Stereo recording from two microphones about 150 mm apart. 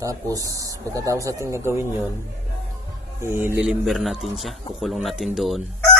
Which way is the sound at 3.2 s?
15° right (ahead or behind).